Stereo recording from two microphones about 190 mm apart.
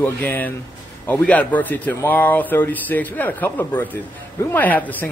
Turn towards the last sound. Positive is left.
turn(degrees=10)  # may be behind; listen again after turning